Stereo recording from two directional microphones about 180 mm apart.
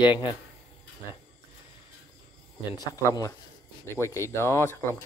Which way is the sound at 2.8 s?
20° left (ahead or behind).